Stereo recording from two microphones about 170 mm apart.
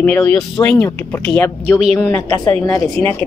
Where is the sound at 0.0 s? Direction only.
10° left (ahead or behind).